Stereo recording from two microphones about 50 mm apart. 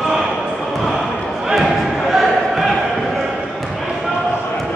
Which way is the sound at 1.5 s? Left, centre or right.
Centre.